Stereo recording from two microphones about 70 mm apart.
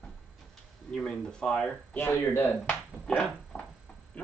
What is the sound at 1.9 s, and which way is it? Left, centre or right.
Speech, left.